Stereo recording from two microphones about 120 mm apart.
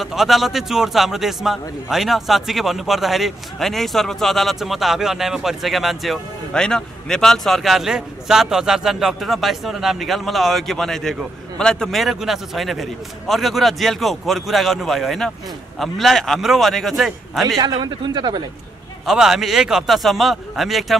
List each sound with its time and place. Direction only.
0.0 s a man's voice: centre (ahead or behind)
17.6 s speech: 35° right (ahead or behind)
19.0 s a man's voice: 5° right (ahead or behind)